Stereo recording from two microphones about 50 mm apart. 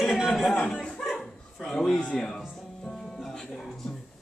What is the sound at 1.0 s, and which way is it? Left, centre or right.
Bow-wow, centre.